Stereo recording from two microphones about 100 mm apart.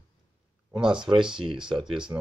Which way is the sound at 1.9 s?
50° right (ahead or behind).